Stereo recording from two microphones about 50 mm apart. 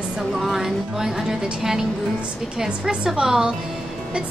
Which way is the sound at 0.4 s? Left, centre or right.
Centre.